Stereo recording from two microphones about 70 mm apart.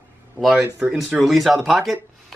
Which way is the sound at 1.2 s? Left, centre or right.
Centre.